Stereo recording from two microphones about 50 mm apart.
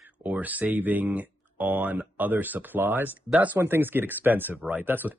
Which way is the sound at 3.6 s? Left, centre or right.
Right.